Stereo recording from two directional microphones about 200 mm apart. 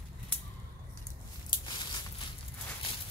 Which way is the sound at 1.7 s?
25° left (ahead or behind).